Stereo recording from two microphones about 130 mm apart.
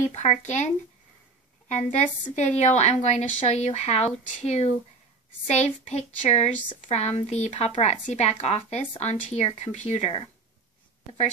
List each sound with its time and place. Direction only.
0.0 s a woman's voice: 60° left (ahead or behind)
1.7 s a woman's voice: 60° left (ahead or behind)